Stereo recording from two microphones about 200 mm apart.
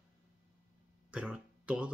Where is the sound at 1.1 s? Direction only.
5° right (ahead or behind).